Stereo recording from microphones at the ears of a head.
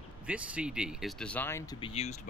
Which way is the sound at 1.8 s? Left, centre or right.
Left.